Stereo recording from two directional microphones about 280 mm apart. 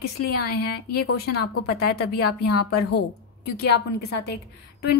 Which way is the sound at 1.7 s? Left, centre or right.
Left.